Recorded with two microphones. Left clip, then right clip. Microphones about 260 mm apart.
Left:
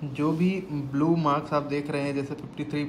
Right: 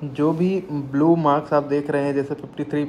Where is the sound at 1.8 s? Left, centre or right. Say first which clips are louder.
Right 8 dB; right.